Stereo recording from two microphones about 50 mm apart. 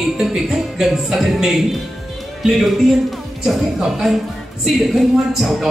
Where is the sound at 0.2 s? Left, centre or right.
Centre.